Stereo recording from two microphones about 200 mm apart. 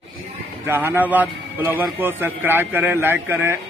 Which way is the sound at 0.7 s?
10° right (ahead or behind).